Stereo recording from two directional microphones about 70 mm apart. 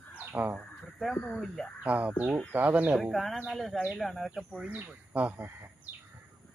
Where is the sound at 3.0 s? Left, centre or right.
Centre.